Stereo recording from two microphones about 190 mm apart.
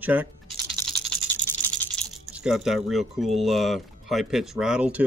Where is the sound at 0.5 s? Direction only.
Centre (ahead or behind).